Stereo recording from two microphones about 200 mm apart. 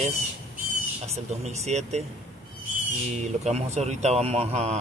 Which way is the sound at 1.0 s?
30° right (ahead or behind).